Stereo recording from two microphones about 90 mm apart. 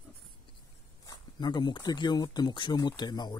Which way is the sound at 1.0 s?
50° left (ahead or behind).